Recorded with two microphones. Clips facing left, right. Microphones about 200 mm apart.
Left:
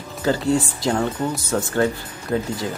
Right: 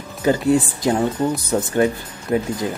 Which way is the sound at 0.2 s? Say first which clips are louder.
Right 3 dB; 15° right (ahead or behind).